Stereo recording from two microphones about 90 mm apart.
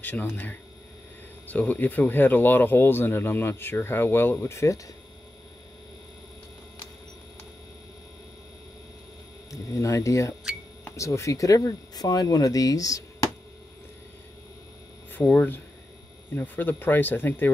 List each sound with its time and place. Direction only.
0.0 s speech: 20° left (ahead or behind)
9.5 s speech: 35° left (ahead or behind)
15.1 s speech: 20° left (ahead or behind)